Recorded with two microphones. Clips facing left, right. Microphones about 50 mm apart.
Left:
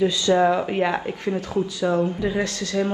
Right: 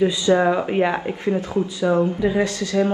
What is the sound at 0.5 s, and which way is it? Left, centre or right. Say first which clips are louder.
Speech: right 2 dB; centre.